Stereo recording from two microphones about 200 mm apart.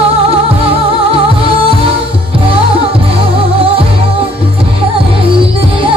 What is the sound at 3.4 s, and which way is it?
Music, 30° right (ahead or behind).